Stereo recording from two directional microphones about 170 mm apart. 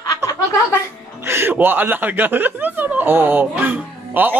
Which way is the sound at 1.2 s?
15° right (ahead or behind).